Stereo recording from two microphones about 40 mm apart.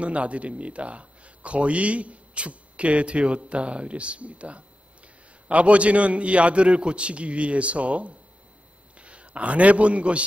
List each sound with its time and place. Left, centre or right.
0.0 s a man's voice: right